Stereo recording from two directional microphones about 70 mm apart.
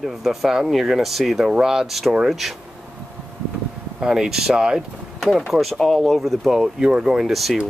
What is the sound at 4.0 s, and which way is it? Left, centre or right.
Speech, centre.